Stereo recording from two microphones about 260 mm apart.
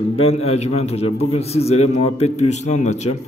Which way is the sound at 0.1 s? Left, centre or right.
Left.